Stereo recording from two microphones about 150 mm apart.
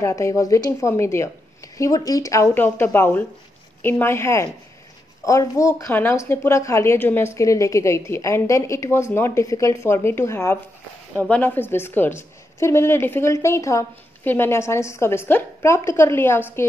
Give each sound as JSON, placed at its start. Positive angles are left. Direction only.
{"t": 0.0, "sound": "a woman's voice", "side_deg": 20}